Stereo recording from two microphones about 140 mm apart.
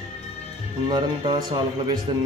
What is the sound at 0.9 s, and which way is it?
Speech, 30° right (ahead or behind).